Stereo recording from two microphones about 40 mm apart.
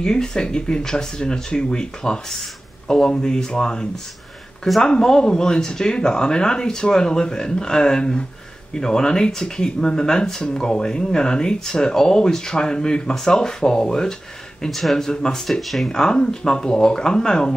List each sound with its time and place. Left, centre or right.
0.0 s speech: centre
15.6 s speech: centre
15.9 s speech: centre